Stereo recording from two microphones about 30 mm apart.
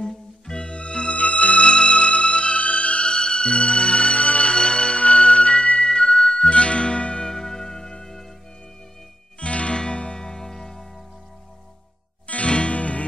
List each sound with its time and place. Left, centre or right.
0.6 s music: left
1.2 s music: left
3.1 s music: left
4.6 s music: left
5.9 s music: left
6.5 s music: left
7.2 s music: centre
9.4 s music: left; by 10.9 s centre
12.3 s music: left